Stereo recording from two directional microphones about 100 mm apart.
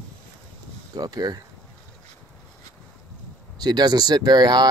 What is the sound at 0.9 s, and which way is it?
Speech, 40° right (ahead or behind).